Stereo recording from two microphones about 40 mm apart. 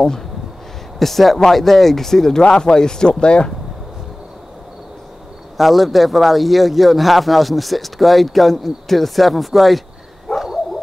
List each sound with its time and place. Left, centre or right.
0.9 s speech: centre; by 3.5 s left
5.6 s speech: centre
10.3 s a sound: centre